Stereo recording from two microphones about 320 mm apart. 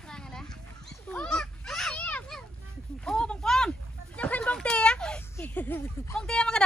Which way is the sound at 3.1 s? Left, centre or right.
Centre.